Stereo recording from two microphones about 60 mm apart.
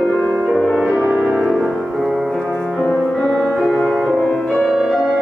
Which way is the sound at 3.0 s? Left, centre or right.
Left.